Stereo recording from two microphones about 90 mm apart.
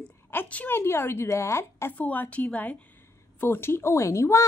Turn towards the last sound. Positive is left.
turn(degrees=30)  # may be behind; listen again after turning